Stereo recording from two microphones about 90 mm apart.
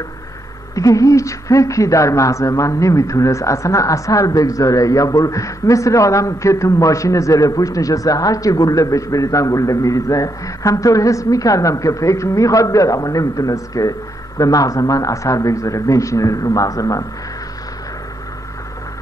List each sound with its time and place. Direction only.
0.7 s a woman's voice: 40° left (ahead or behind)